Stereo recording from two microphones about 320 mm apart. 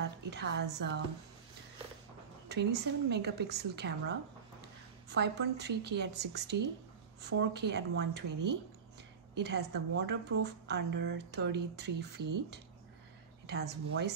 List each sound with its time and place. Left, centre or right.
0.3 s a woman's voice: right
2.4 s a woman's voice: right
5.1 s a woman's voice: right